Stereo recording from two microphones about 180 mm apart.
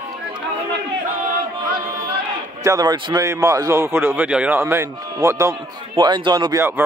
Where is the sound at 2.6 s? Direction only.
20° right (ahead or behind).